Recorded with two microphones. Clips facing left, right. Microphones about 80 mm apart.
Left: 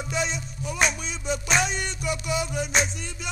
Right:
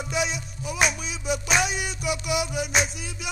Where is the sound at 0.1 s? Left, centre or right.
Centre.